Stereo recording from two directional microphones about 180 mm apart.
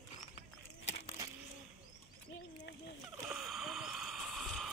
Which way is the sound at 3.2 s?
Centre (ahead or behind).